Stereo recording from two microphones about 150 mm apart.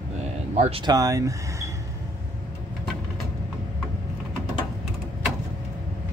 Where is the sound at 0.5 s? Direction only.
45° right (ahead or behind).